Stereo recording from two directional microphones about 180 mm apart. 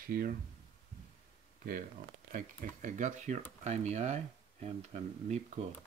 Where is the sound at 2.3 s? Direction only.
45° right (ahead or behind).